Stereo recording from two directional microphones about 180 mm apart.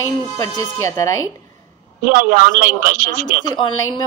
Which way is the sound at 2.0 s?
50° right (ahead or behind).